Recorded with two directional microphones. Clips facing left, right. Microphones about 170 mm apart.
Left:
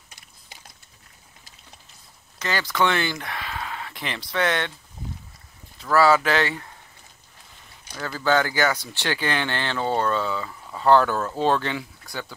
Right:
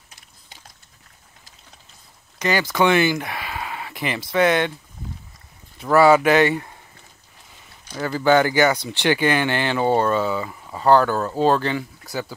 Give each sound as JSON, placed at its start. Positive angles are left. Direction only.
{"t": 2.3, "sound": "a sound", "side_deg": -15}
{"t": 4.3, "sound": "speech", "side_deg": -10}
{"t": 5.8, "sound": "speech", "side_deg": -20}
{"t": 8.0, "sound": "speech", "side_deg": -15}